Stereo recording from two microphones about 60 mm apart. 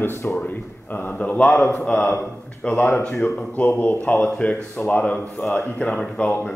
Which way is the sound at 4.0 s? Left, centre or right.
Left.